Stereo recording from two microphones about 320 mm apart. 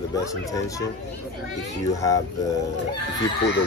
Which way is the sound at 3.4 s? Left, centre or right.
Left.